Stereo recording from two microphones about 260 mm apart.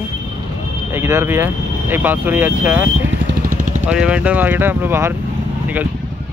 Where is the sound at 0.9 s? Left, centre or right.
Centre.